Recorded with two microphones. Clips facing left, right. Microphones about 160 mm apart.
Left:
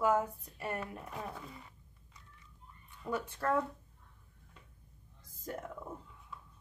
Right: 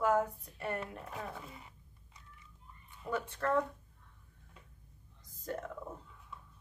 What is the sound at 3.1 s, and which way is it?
Speech, 5° left (ahead or behind).